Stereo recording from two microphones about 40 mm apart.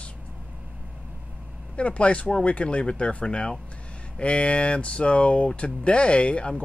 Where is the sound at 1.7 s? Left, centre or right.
Left.